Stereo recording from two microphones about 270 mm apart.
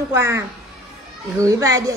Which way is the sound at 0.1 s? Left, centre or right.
Centre.